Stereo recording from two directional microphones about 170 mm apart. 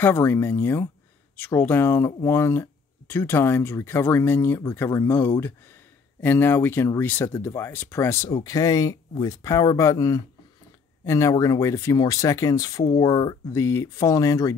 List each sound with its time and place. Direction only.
0.0 s speech: 10° left (ahead or behind)